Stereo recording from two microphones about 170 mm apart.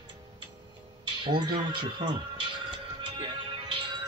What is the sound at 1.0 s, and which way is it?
Speech, 25° right (ahead or behind).